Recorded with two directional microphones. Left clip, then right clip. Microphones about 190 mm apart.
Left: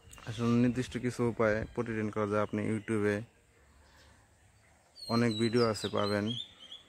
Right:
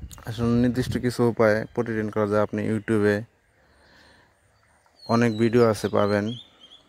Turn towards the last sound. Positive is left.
turn(degrees=-35)  # may be behind; listen again after turning